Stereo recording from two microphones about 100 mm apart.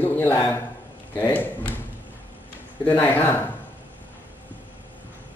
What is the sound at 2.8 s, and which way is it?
Speech, 20° left (ahead or behind).